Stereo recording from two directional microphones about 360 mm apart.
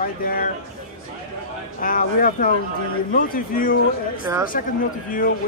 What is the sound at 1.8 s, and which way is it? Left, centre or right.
Speech, left.